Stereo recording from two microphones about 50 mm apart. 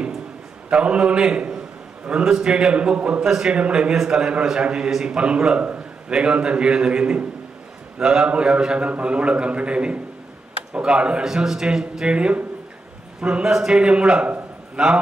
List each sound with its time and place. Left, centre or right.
0.7 s a man's voice: right
3.9 s a man's voice: centre
11.2 s a man's voice: centre
12.1 s a man's voice: right